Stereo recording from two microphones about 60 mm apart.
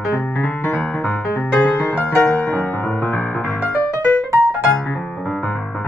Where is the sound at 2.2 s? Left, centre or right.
Left.